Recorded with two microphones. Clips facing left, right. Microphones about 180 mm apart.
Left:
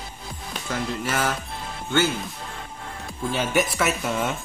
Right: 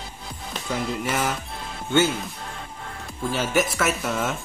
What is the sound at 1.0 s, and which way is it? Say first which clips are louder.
Music: left 2 dB; 15° right (ahead or behind).